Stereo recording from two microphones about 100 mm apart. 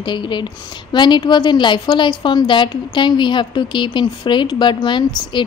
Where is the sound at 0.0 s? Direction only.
50° left (ahead or behind).